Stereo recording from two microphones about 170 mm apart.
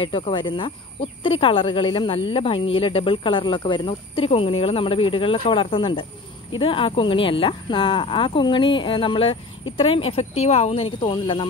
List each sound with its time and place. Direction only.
0.0 s cricket: 30° left (ahead or behind)
1.2 s speech: 30° left (ahead or behind)